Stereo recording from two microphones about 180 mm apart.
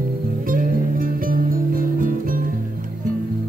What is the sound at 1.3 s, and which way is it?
Music, 50° right (ahead or behind).